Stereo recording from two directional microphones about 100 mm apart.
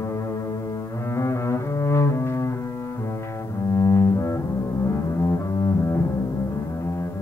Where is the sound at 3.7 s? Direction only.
30° left (ahead or behind).